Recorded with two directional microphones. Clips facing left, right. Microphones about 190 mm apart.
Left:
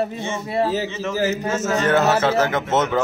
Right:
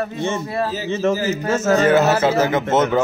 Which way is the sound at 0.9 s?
50° right (ahead or behind).